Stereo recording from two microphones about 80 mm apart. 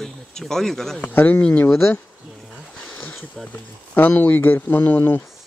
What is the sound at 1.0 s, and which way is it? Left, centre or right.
Speech, left.